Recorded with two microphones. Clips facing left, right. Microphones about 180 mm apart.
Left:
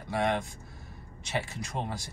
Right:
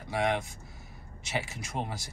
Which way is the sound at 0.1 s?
5° right (ahead or behind).